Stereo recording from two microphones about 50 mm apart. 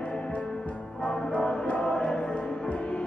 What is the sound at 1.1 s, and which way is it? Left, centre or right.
Music, centre.